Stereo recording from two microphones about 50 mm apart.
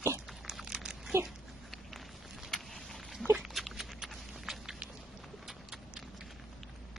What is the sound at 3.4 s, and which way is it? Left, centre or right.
Dog, centre.